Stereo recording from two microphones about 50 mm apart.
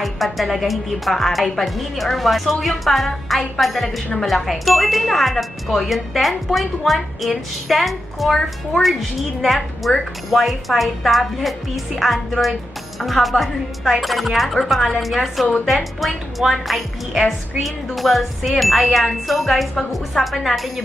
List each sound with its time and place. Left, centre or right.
0.0 s a woman's voice: centre